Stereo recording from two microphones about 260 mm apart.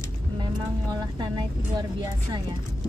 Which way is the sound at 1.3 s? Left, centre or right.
Centre.